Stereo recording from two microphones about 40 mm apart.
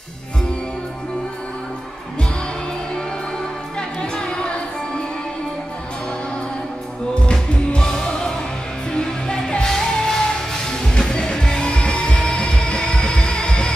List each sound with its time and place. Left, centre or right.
4.0 s music: left
7.2 s music: left